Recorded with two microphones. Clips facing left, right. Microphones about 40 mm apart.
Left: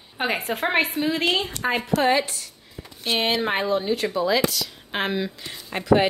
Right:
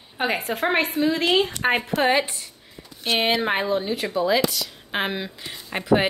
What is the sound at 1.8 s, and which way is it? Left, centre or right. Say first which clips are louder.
A woman's voice: left 3 dB; centre.